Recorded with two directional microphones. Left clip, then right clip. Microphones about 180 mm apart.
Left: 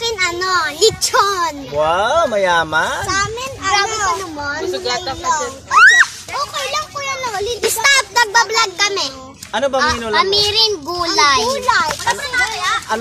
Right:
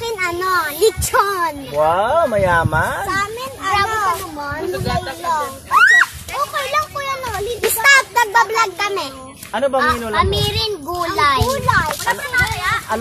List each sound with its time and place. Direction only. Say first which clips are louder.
0.0 s a child's voice: left 2 dB; 5° right (ahead or behind)
3.1 s children playing: left 2 dB; 20° left (ahead or behind)
4.0 s a sound: left 1 dB; 15° left (ahead or behind)
4.8 s speech: left 2 dB; 55° left (ahead or behind)
5.7 s a sound: left 2 dB; 5° right (ahead or behind)
7.0 s children playing: left 1 dB; 25° left (ahead or behind)
7.8 s a child's voice: right 1 dB; 10° right (ahead or behind)
9.5 s a child's voice: even; 5° left (ahead or behind)
11.9 s children playing: left 1 dB; 40° left (ahead or behind)